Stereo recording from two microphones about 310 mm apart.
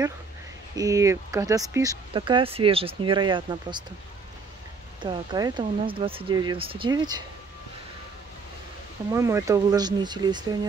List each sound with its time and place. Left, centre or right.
0.7 s speech: centre
5.0 s speech: centre
9.1 s speech: centre